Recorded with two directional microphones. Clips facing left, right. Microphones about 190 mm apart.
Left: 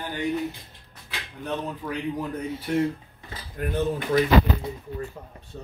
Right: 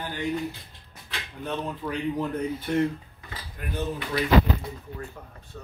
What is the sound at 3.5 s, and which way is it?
Speech, 45° left (ahead or behind).